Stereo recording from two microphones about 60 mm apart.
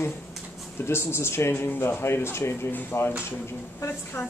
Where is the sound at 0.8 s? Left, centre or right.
Left.